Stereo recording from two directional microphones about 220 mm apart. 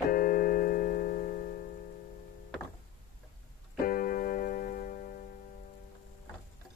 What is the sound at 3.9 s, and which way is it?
Keyboard, 40° left (ahead or behind).